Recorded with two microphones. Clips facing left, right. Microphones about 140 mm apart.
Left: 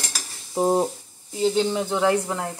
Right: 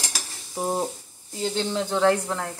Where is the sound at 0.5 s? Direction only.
30° left (ahead or behind).